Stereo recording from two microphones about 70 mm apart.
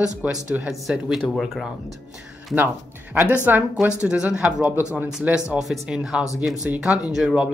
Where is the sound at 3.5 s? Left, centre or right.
Right.